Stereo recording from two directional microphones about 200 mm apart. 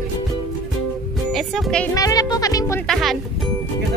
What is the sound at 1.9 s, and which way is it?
Speech, 20° left (ahead or behind).